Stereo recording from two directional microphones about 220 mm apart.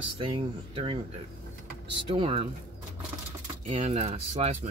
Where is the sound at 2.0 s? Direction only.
25° right (ahead or behind).